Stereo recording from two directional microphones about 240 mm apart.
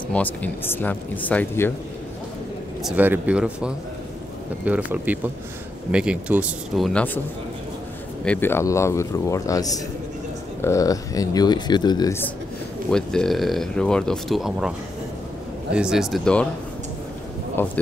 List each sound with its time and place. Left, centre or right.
0.1 s speech: centre
2.8 s speech: centre
8.3 s speech: centre
12.9 s speech: centre
15.7 s speech: centre
17.6 s speech: centre